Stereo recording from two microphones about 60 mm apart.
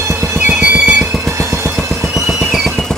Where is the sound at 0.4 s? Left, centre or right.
Right.